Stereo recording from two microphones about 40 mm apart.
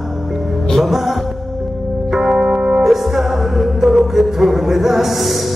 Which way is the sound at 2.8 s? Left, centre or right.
Centre.